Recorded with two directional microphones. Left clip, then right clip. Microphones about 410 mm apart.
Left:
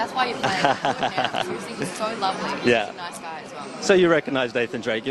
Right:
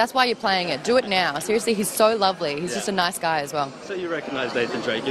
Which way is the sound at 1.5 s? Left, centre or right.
Right.